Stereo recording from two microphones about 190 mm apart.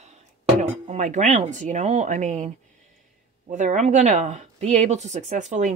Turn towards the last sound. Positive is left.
turn(degrees=-40)  # may be behind; listen again after turning